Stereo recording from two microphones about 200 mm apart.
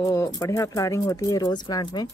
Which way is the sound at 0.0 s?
15° left (ahead or behind).